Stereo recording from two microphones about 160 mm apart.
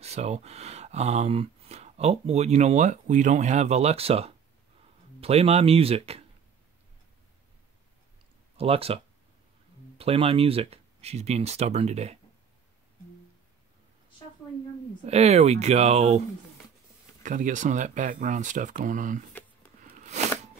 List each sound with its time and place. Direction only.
0.0 s speech: 40° right (ahead or behind)
8.5 s speech: 35° right (ahead or behind)
15.0 s speech: 40° right (ahead or behind)
17.2 s speech: 55° right (ahead or behind)